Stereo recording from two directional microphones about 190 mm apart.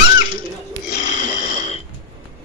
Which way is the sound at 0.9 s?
40° left (ahead or behind).